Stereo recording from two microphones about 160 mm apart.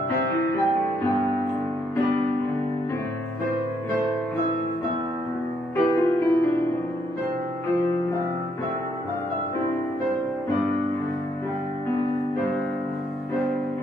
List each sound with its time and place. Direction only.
5.8 s music: 15° left (ahead or behind)